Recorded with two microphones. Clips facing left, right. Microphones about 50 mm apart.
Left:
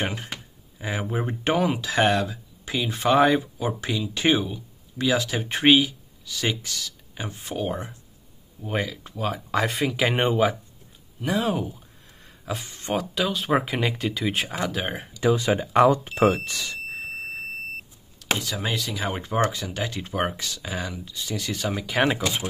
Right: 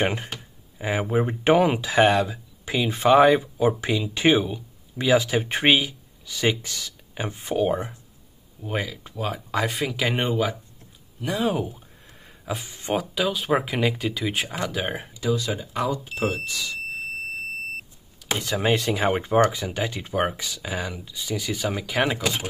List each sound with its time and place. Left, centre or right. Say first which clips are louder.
0.7 s speech: right 5 dB; centre
3.6 s speech: right 5 dB; centre
8.6 s speech: left 1 dB; centre
10.1 s speech: left 4 dB; centre
11.1 s speech: even; centre
15.1 s speech: left 5 dB; left
16.4 s speech: right 1 dB; left
18.4 s speech: right 6 dB; right
19.1 s speech: right 2 dB; centre